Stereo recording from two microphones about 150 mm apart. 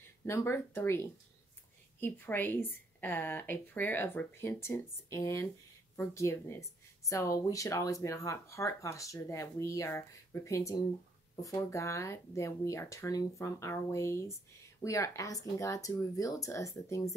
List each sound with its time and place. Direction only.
0.2 s a woman's voice: 15° left (ahead or behind)